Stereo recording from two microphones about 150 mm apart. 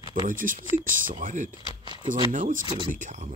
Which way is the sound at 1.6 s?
30° right (ahead or behind).